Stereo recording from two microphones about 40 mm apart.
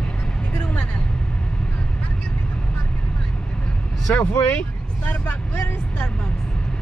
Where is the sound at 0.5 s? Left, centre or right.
Left.